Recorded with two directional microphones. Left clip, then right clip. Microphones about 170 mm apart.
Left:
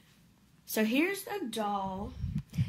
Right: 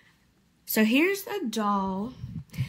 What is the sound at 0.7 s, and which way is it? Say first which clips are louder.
Speech: right 6 dB; 45° right (ahead or behind).